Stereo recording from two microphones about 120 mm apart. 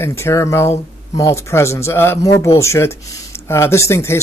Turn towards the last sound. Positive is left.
turn(degrees=25)  # may be behind; listen again after turning